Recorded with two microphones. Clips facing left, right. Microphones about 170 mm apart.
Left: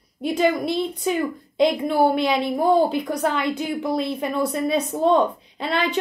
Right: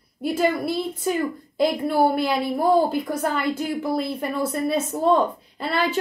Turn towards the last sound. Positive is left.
turn(degrees=-5)  # may be behind; listen again after turning